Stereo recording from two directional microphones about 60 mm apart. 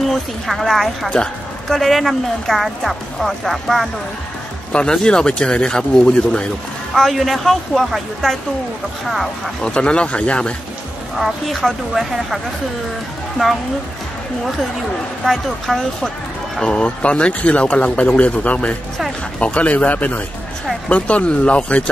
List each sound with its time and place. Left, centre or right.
0.0 s a woman's voice: centre
4.7 s speech: centre
6.9 s speech: centre
9.6 s a man's voice: centre
11.1 s speech: centre
15.2 s speech: centre
16.6 s a man's voice: centre